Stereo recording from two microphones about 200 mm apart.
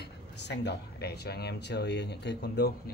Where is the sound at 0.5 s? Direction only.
55° left (ahead or behind).